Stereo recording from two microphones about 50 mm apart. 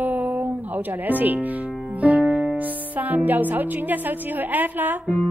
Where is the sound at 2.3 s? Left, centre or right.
Centre.